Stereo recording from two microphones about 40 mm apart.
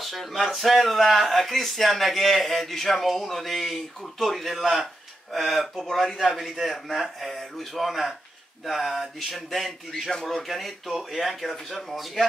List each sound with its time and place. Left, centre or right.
0.0 s speech: centre